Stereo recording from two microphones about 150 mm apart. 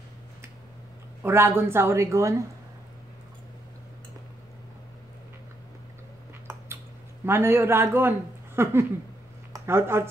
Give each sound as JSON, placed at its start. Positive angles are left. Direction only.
{"t": 1.2, "sound": "a woman's voice", "side_deg": -15}
{"t": 7.2, "sound": "a woman's voice", "side_deg": -15}